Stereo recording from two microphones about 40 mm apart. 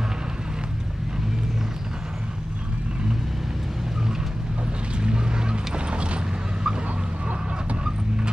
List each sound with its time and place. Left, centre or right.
5.0 s vehicle: right